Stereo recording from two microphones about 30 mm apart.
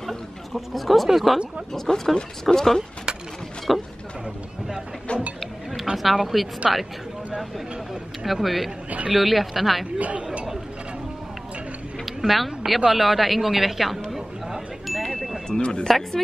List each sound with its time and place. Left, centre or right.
0.5 s a man's voice: centre
1.9 s speech: centre
3.7 s a sound: centre
5.1 s speech: left
6.0 s a man's voice: centre
8.3 s a man's voice: centre
9.9 s speech: right
12.2 s a man's voice: centre
14.9 s a sound: centre
15.4 s speech: left